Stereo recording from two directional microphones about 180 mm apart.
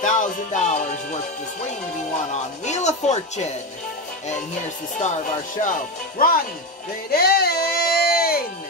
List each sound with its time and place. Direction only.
0.0 s music: 45° left (ahead or behind)
2.3 s speech: 40° left (ahead or behind)
5.6 s speech: 50° left (ahead or behind)
7.1 s music: 60° left (ahead or behind)